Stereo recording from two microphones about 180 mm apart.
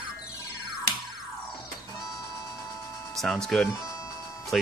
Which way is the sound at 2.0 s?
20° left (ahead or behind).